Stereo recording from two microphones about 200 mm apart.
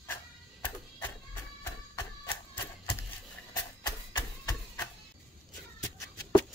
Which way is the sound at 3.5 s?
20° left (ahead or behind).